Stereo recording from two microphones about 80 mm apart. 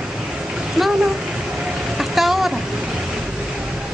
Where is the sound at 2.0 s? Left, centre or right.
Centre.